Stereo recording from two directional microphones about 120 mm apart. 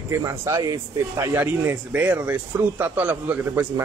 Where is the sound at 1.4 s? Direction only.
15° right (ahead or behind).